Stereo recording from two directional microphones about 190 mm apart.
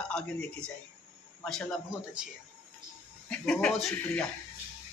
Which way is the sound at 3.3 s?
5° left (ahead or behind).